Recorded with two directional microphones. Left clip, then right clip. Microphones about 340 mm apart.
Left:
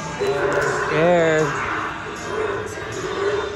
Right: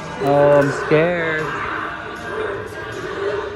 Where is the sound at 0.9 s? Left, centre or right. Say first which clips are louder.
Left 1 dB; centre.